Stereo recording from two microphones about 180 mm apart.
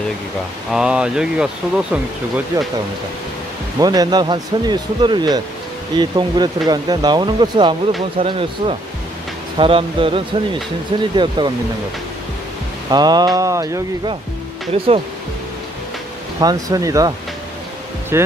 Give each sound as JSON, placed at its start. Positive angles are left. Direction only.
{"t": 0.7, "sound": "speech", "side_deg": -5}
{"t": 3.8, "sound": "speech", "side_deg": -20}
{"t": 12.9, "sound": "speech", "side_deg": -20}
{"t": 14.7, "sound": "speech", "side_deg": -35}
{"t": 16.3, "sound": "speech", "side_deg": -20}
{"t": 18.1, "sound": "speech", "side_deg": -15}